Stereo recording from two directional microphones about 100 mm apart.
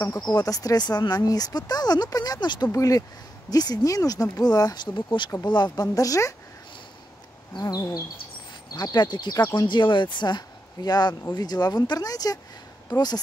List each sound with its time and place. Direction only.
0.3 s speech: 35° left (ahead or behind)
2.7 s speech: 35° left (ahead or behind)
7.5 s speech: 40° left (ahead or behind)